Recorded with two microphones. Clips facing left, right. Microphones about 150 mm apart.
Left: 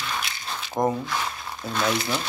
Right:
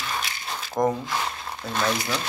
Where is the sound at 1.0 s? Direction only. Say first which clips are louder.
Even; 15° right (ahead or behind).